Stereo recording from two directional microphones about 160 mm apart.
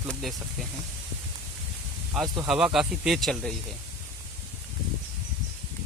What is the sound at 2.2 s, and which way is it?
Speech, 25° right (ahead or behind).